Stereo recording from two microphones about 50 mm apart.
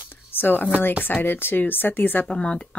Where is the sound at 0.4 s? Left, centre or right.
Left.